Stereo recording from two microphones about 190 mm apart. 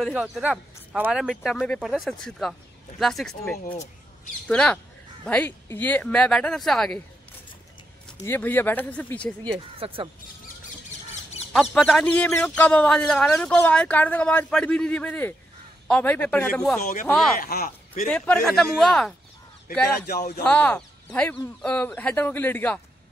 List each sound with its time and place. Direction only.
0.0 s a man's voice: 5° right (ahead or behind)
3.6 s a sound: 45° left (ahead or behind)
4.5 s speech: 5° left (ahead or behind)
8.2 s speech: 10° left (ahead or behind)
9.8 s speech: 30° right (ahead or behind)
11.5 s speech: centre (ahead or behind)
17.4 s speech: 50° left (ahead or behind)
18.0 s speech: 5° left (ahead or behind)
20.4 s speech: 5° left (ahead or behind)